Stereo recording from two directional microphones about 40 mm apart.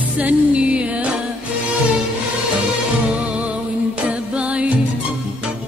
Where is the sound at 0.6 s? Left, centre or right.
Right.